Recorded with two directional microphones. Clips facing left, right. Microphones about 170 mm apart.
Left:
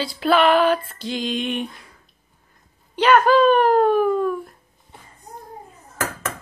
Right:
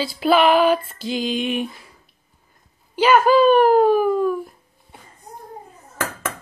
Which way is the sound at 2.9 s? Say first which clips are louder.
Right 1 dB; 5° right (ahead or behind).